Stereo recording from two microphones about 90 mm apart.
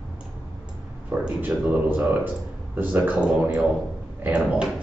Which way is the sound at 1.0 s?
15° right (ahead or behind).